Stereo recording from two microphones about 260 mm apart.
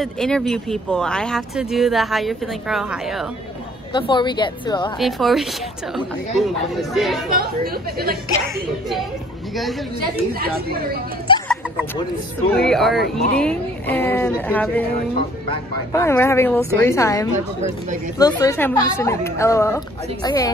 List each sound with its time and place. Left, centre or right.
0.0 s speech: centre
3.9 s speech: centre
4.9 s speech: centre
7.2 s speech: right
12.5 s speech: centre